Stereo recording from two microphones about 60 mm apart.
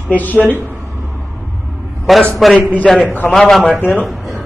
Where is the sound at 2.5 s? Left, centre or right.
Left.